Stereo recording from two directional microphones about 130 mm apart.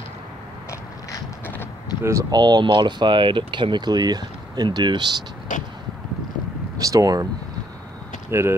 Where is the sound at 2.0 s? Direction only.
20° right (ahead or behind).